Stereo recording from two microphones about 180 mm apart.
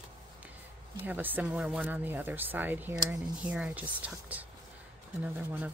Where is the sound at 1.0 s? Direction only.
10° right (ahead or behind).